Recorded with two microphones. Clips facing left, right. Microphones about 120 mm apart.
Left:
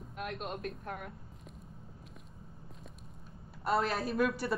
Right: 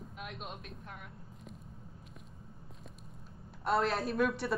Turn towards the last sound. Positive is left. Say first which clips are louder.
# even
turn(degrees=0)  # may be behind; listen again after turning